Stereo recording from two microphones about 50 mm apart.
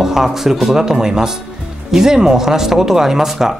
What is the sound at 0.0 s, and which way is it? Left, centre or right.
Speech, centre.